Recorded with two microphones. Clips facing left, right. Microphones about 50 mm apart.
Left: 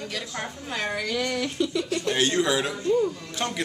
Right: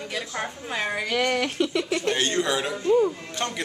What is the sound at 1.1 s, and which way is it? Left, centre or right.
Speech, right.